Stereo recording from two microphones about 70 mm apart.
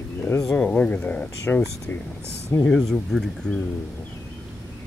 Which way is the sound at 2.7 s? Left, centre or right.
Centre.